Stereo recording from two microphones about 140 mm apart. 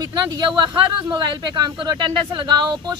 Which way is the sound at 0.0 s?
30° right (ahead or behind).